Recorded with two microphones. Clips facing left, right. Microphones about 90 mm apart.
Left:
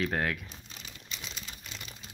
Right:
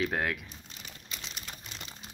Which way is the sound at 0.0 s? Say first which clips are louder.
Even; centre (ahead or behind).